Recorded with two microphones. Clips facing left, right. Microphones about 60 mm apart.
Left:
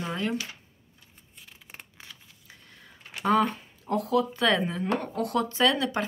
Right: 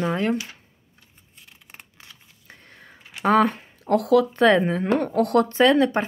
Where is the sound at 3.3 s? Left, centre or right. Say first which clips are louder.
Right 5 dB; right.